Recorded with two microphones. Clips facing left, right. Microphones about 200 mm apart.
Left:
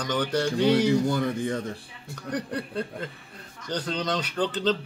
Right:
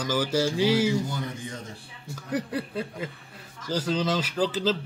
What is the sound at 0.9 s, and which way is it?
Speech, 60° left (ahead or behind).